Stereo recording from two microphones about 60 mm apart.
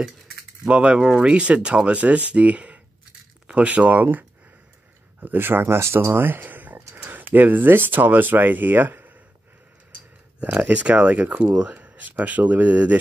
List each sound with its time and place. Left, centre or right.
0.7 s speech: centre
10.4 s speech: right